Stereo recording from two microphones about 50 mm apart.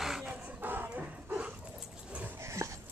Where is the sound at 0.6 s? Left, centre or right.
Right.